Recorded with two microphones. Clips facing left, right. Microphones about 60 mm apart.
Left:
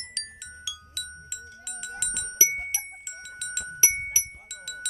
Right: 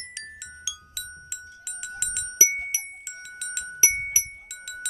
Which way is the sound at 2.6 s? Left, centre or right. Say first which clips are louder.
Right 1 dB; centre.